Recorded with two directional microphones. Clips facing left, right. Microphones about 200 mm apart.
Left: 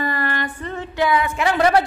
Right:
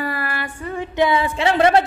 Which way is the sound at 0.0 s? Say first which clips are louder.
Left 2 dB; 10° right (ahead or behind).